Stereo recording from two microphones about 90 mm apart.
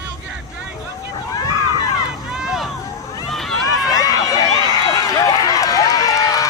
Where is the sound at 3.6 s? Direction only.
45° left (ahead or behind).